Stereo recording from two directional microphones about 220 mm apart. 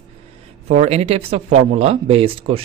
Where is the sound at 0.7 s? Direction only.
30° right (ahead or behind).